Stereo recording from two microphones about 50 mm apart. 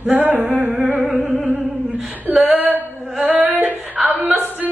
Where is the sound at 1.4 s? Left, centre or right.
Right.